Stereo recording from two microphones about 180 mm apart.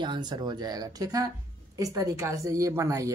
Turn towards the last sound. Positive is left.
turn(degrees=-15)  # may be behind; listen again after turning